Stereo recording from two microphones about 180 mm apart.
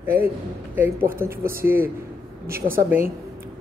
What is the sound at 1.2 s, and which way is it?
Speech, 10° right (ahead or behind).